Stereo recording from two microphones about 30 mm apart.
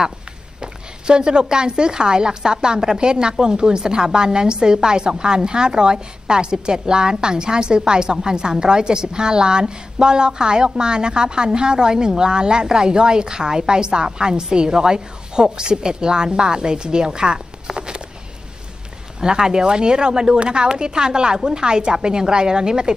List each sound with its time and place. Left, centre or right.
0.6 s speech: right
19.1 s speech: right